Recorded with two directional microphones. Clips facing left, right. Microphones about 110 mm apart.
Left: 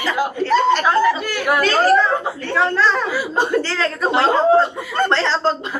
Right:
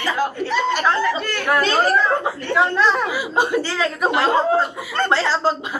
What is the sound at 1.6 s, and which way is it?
A child's voice, 20° right (ahead or behind).